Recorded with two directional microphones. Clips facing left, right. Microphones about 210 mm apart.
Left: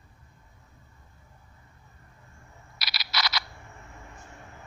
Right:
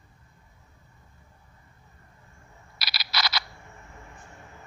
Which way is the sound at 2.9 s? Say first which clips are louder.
Right 1 dB; 30° right (ahead or behind).